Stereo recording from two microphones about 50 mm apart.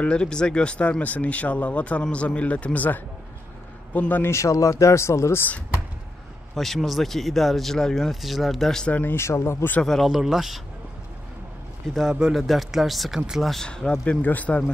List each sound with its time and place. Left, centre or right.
0.0 s a man's voice: centre; by 4.2 s left
4.2 s speech: left
6.5 s speech: centre
9.1 s speech: left
10.0 s speech: centre
11.9 s speech: centre
13.7 s speech: centre
14.0 s a man's voice: left